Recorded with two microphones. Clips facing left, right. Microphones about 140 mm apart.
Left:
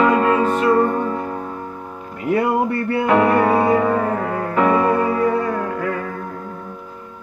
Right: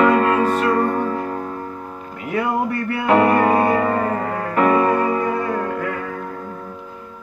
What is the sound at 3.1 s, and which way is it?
Music, 10° right (ahead or behind).